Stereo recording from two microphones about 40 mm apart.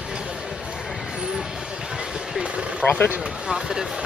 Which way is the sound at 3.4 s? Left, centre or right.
Centre.